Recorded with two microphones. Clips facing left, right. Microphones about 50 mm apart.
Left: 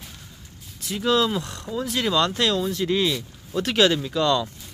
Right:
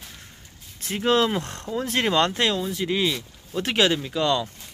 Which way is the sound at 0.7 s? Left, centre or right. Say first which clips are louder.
Right 1 dB; right.